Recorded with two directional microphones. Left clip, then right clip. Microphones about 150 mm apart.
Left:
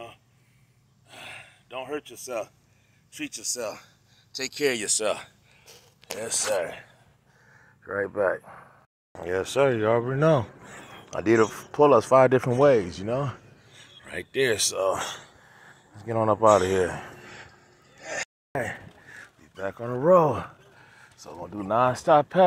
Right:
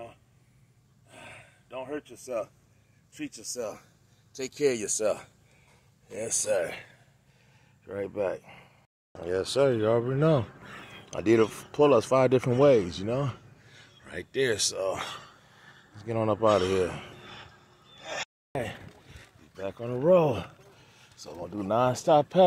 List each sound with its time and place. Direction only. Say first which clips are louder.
1.1 s gasp: left 6 dB; 10° right (ahead or behind)
3.1 s speech: left 6 dB; 20° right (ahead or behind)
4.4 s speech: left 1 dB; 35° right (ahead or behind)
6.5 s speech: even; 40° right (ahead or behind)
7.8 s speech: left 5 dB; 5° left (ahead or behind)
12.6 s speech: left 1 dB; 5° left (ahead or behind)
15.2 s a sound: left 2 dB; 10° left (ahead or behind)
18.5 s a sound: left 4 dB; centre (ahead or behind)
19.5 s speech: left 3 dB; 10° left (ahead or behind); by 22.4 s 10° right (ahead or behind)